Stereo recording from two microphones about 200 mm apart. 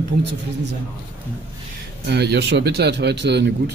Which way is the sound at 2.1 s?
55° right (ahead or behind).